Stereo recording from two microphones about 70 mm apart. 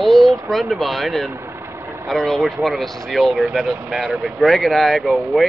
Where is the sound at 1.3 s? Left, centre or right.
Right.